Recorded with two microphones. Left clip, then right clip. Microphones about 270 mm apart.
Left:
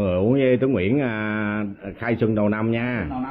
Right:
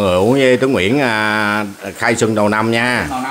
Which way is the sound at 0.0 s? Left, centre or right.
Right.